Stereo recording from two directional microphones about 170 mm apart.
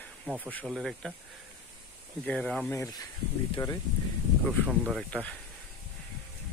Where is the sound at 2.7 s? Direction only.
20° left (ahead or behind).